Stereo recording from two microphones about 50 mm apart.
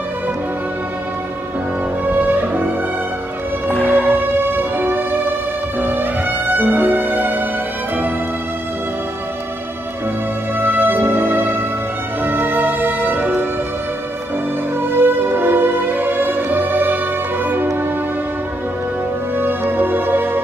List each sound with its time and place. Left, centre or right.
2.0 s music: right
3.7 s music: left
4.4 s music: right
10.6 s music: right
14.8 s music: right
19.3 s music: right